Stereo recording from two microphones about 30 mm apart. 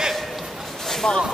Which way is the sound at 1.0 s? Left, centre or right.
Left.